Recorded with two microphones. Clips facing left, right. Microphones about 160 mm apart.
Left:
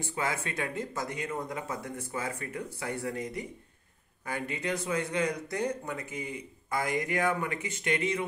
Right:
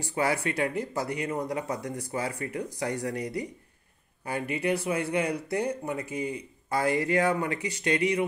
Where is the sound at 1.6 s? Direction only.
35° right (ahead or behind).